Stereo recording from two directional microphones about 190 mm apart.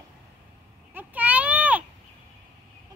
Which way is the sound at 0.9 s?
10° right (ahead or behind).